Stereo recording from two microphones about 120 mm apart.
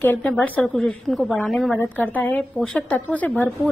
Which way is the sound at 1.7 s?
15° left (ahead or behind).